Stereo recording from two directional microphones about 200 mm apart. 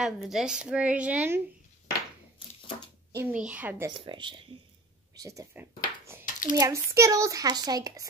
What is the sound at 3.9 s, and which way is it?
Speech, 25° right (ahead or behind).